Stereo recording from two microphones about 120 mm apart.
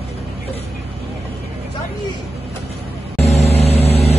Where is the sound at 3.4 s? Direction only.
60° left (ahead or behind).